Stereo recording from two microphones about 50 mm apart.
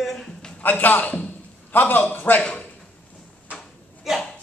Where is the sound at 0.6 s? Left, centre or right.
Left.